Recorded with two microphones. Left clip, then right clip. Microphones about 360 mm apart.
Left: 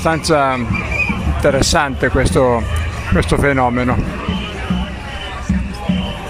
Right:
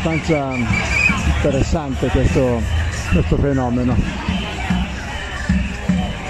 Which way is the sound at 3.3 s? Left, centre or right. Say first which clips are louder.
Left 7 dB; left.